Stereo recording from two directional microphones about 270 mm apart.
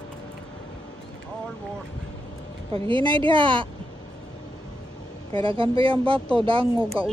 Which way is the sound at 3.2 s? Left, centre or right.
Centre.